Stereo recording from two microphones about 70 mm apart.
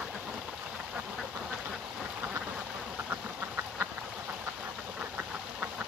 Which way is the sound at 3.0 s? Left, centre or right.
Right.